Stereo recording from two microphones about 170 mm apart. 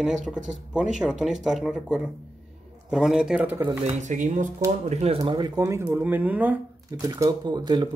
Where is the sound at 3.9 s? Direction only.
45° right (ahead or behind).